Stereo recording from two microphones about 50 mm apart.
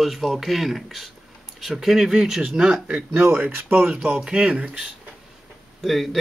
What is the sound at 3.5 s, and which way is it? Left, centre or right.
Speech, right.